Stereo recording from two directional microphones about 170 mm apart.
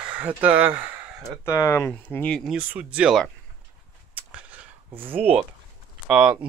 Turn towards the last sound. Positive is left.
turn(degrees=-5)  # may be behind; listen again after turning